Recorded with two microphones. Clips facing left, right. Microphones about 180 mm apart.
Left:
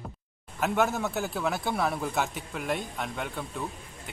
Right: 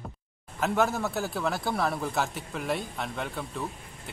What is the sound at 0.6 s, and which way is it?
A man's voice, centre (ahead or behind).